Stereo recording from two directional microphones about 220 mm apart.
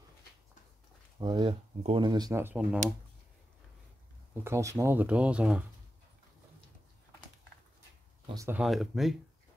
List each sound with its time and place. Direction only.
1.2 s speech: 20° right (ahead or behind)
4.4 s speech: 10° right (ahead or behind)
8.4 s speech: 10° right (ahead or behind)